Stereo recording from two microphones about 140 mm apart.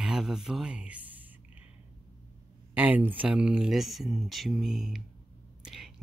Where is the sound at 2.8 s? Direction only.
10° right (ahead or behind).